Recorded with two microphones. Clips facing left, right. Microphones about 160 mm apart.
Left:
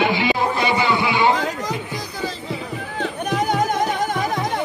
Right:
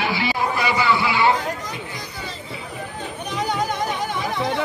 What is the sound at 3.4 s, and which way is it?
Music, 50° left (ahead or behind).